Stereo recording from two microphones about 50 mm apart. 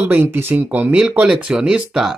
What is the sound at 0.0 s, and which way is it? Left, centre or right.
Speech, right.